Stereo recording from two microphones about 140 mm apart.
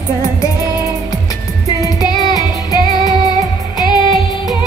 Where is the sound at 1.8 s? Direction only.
30° left (ahead or behind).